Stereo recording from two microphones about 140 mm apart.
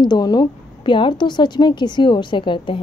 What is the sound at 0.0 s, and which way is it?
A woman's voice, 30° left (ahead or behind).